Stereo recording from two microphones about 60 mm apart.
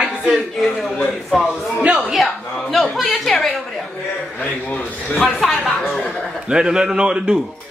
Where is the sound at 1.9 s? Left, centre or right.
Centre.